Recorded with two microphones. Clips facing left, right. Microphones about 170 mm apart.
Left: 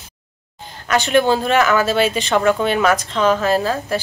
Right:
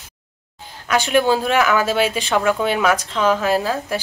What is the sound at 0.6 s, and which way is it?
Speech, 10° right (ahead or behind).